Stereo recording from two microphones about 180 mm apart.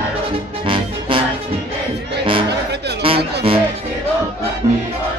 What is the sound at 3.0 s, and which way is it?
Music, 30° right (ahead or behind).